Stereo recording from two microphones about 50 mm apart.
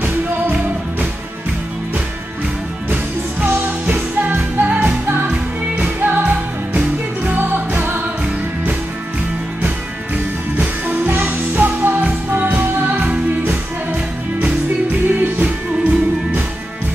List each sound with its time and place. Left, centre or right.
3.4 s music: right
5.9 s music: right
11.1 s music: right
15.0 s music: right